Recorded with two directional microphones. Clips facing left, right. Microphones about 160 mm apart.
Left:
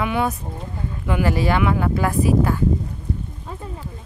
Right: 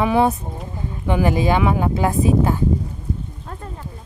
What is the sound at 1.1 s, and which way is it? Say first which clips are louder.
Speech: right 2 dB; 20° right (ahead or behind).